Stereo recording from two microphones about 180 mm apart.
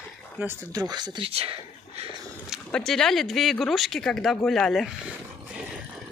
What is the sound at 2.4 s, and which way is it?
A woman's voice, centre (ahead or behind).